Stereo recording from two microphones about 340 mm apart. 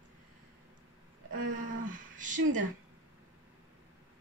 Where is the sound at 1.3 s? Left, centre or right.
Right.